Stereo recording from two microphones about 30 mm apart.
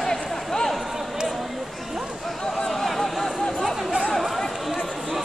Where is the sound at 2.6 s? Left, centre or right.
Centre.